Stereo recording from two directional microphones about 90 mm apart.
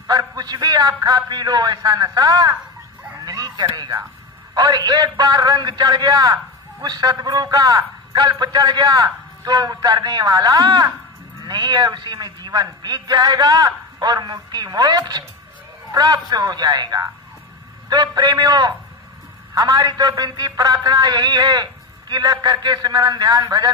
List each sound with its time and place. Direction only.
0.0 s a man's voice: 45° right (ahead or behind)
3.2 s a sound: 45° right (ahead or behind)
4.6 s a man's voice: 50° right (ahead or behind)